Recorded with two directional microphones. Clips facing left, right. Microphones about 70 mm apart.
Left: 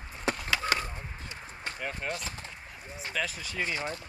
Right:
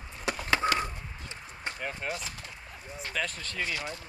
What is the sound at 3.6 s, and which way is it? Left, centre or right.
Speech, left.